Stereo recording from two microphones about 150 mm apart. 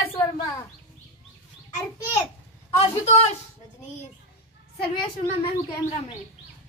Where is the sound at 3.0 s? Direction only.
45° left (ahead or behind).